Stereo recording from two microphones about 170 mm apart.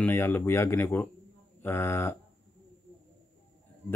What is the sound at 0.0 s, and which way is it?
Speech, 15° left (ahead or behind).